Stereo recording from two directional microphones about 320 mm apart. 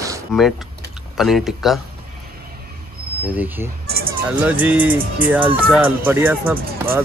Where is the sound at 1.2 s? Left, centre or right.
Centre.